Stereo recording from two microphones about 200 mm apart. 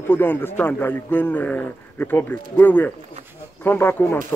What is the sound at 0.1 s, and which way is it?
A man's voice, 10° left (ahead or behind).